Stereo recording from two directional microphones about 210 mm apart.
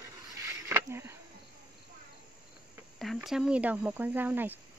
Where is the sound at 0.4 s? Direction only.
10° right (ahead or behind).